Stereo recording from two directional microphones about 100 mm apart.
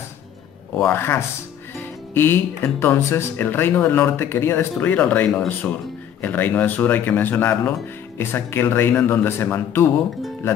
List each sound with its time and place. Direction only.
0.7 s speech: 25° left (ahead or behind)